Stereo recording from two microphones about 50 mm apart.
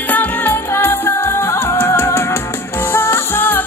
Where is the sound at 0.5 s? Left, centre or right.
Left.